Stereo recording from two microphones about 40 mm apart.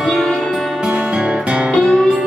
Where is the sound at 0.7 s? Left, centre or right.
Centre.